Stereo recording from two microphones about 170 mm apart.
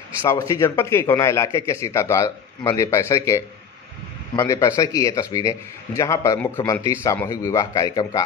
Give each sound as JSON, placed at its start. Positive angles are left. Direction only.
{"t": 0.2, "sound": "a man's voice", "side_deg": 20}